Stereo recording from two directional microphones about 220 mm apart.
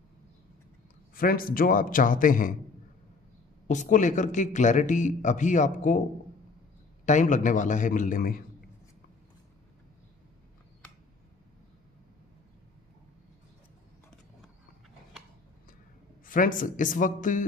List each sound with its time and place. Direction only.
1.1 s a man's voice: 40° left (ahead or behind)
3.6 s a man's voice: 35° left (ahead or behind)
7.1 s a man's voice: 35° left (ahead or behind)
16.3 s a man's voice: 40° left (ahead or behind)